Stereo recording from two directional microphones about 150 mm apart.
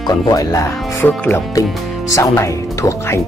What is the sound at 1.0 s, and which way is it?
Speech, 10° left (ahead or behind).